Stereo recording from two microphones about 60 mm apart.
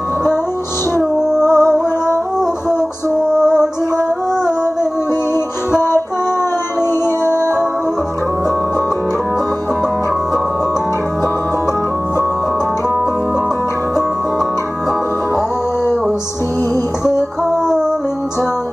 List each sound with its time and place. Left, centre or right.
0.9 s music: left
3.3 s music: centre
5.8 s music: left